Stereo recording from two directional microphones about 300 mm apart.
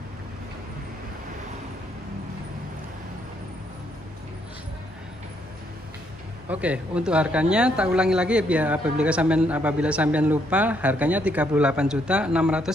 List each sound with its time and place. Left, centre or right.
6.5 s a man's voice: centre